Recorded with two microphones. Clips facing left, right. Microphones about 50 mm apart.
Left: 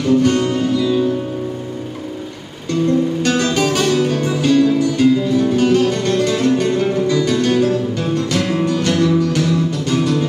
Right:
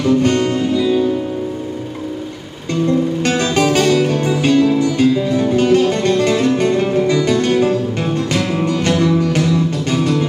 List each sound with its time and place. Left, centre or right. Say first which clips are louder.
0.0 s music: even; right
3.2 s music: right 1 dB; right